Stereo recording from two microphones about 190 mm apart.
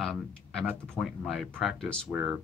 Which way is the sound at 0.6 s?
Centre (ahead or behind).